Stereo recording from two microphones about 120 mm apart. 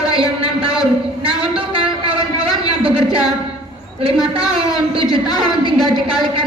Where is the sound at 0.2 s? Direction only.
50° right (ahead or behind).